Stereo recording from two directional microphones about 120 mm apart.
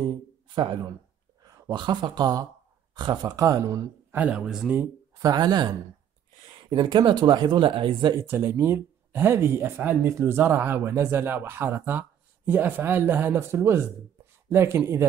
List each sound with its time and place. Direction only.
1.7 s speech: 40° right (ahead or behind)
4.2 s speech: 5° right (ahead or behind)
5.1 s speech: 30° right (ahead or behind)
8.1 s speech: 20° right (ahead or behind)